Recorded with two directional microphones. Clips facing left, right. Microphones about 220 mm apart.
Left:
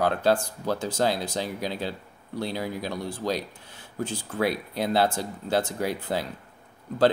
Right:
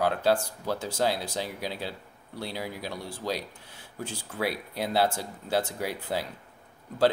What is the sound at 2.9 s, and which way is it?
Speech, 15° left (ahead or behind).